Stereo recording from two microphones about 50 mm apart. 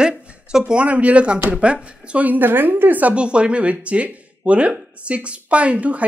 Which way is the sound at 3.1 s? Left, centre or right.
Right.